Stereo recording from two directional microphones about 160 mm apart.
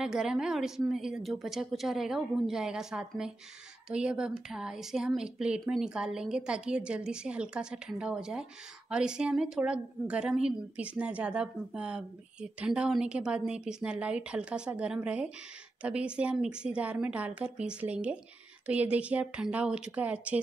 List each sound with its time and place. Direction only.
0.0 s speech: 5° right (ahead or behind)